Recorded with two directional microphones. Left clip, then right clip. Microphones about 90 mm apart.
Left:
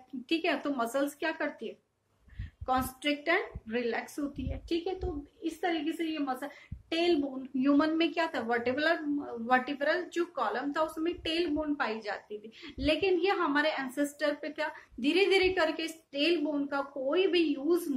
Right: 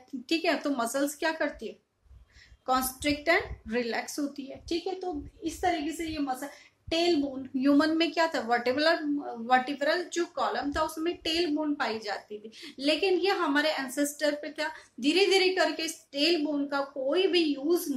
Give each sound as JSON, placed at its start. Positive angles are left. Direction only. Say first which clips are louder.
{"t": 0.3, "sound": "a woman's voice", "louder": "right 3 dB", "side_deg": -50}
{"t": 7.5, "sound": "speech", "louder": "right 3 dB", "side_deg": -50}
{"t": 9.2, "sound": "speech", "louder": "right 3 dB", "side_deg": -20}